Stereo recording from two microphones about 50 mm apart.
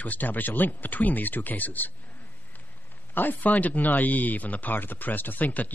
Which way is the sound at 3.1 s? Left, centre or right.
Left.